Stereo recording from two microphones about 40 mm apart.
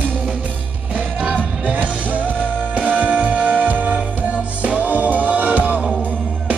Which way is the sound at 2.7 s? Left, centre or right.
Right.